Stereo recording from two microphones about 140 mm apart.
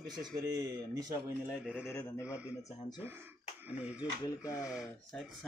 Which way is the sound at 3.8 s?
10° right (ahead or behind).